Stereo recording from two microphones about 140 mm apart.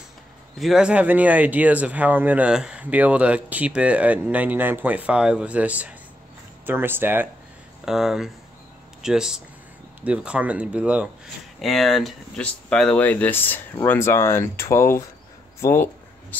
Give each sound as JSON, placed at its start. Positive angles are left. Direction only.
{"t": 0.6, "sound": "speech", "side_deg": -5}
{"t": 7.8, "sound": "speech", "side_deg": -5}
{"t": 15.6, "sound": "a sound", "side_deg": 15}